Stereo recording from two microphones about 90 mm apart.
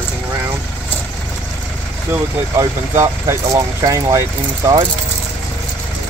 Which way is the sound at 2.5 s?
35° right (ahead or behind).